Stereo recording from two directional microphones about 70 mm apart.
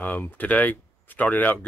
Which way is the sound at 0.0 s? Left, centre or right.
Left.